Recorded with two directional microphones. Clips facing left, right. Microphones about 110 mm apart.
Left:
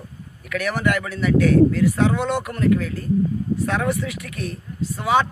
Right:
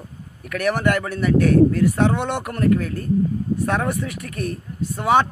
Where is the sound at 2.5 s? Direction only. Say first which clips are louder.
Right 1 dB; 60° right (ahead or behind).